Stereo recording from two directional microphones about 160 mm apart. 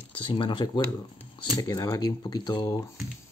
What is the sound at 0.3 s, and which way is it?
Speech, 30° left (ahead or behind).